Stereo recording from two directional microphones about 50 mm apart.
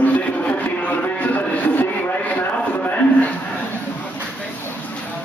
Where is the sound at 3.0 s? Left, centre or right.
Left.